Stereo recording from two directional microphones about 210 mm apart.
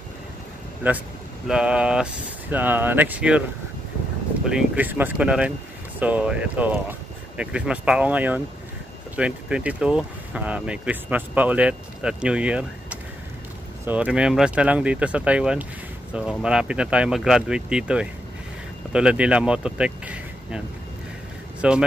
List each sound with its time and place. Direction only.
0.8 s speech: 10° right (ahead or behind)
4.5 s speech: 5° right (ahead or behind)